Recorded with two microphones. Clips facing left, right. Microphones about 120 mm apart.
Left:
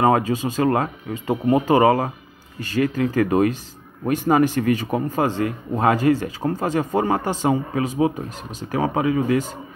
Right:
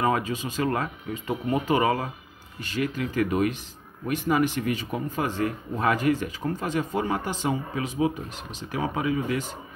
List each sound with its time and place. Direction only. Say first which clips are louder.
0.0 s speech: left 7 dB; 35° left (ahead or behind)
1.8 s speech: left 8 dB; 45° left (ahead or behind)
5.8 s speech: left 6 dB; 35° left (ahead or behind)